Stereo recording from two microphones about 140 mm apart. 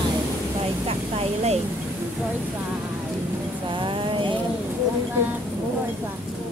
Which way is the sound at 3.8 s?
35° right (ahead or behind).